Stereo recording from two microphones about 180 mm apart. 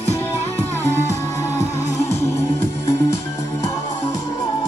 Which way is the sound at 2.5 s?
35° left (ahead or behind).